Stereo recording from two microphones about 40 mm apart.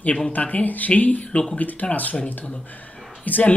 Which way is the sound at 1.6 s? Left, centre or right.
Left.